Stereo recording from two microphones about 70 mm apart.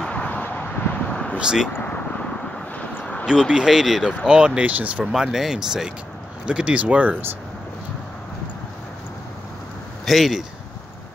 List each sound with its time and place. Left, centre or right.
0.0 s vehicle: centre
1.4 s speech: centre
1.7 s a sound: left
3.3 s speech: centre
5.1 s speech: centre
10.0 s speech: centre